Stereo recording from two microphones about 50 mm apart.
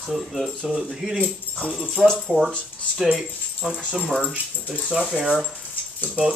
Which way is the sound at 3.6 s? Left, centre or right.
Right.